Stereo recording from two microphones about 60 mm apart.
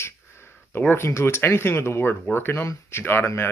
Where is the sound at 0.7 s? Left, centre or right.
Left.